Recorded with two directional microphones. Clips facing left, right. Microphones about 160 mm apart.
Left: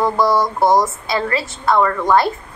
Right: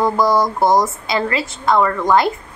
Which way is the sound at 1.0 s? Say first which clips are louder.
Even; 15° right (ahead or behind).